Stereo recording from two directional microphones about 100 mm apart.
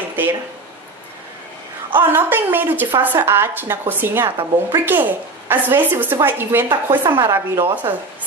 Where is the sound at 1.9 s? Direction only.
20° right (ahead or behind).